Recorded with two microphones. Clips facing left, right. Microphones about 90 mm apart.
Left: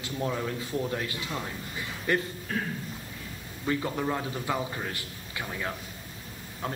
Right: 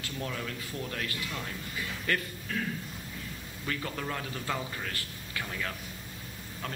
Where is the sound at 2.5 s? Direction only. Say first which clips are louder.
Left 2 dB; 40° left (ahead or behind).